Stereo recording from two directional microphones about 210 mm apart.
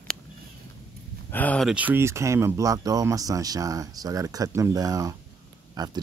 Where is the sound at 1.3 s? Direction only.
10° left (ahead or behind).